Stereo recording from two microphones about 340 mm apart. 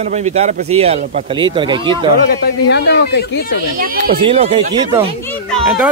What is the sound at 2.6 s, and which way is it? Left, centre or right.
Speech, left.